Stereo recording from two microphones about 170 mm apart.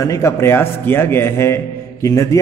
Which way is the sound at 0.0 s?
15° left (ahead or behind).